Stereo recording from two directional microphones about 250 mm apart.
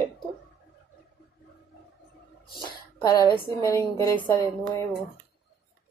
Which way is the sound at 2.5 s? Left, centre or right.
Centre.